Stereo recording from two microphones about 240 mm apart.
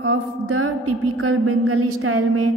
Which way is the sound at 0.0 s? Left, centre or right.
Right.